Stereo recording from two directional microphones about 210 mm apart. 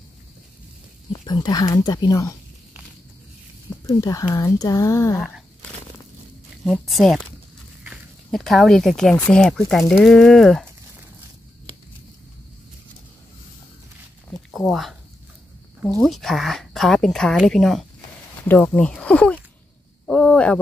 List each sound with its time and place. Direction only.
1.2 s speech: 20° left (ahead or behind)
3.8 s speech: 15° left (ahead or behind)
6.6 s speech: centre (ahead or behind)
14.5 s speech: centre (ahead or behind)
20.1 s a sound: 5° left (ahead or behind)